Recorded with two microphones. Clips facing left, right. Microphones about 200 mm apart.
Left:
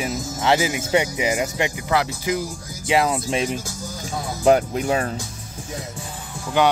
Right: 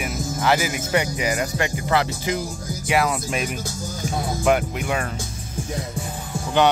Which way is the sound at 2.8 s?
25° left (ahead or behind).